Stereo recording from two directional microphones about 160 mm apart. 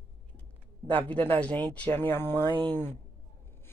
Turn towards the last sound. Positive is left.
turn(degrees=15)  # may be behind; listen again after turning